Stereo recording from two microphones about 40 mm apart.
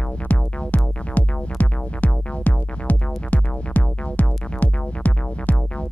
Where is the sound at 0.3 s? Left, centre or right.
Left.